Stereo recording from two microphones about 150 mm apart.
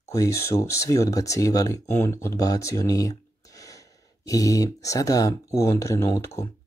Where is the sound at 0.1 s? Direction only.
20° left (ahead or behind).